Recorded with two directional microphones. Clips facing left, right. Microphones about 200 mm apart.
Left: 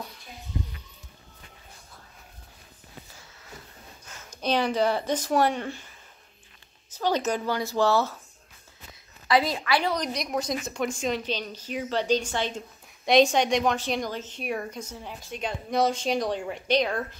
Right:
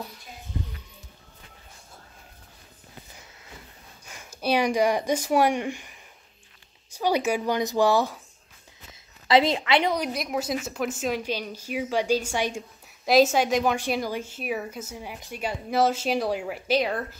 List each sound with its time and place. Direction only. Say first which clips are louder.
4.1 s a woman's voice: right 2 dB; 10° right (ahead or behind)
9.3 s a woman's voice: right 3 dB; 25° right (ahead or behind)
9.9 s a woman's voice: right 1 dB; 5° right (ahead or behind)